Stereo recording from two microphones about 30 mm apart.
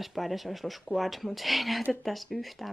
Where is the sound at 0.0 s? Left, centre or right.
Centre.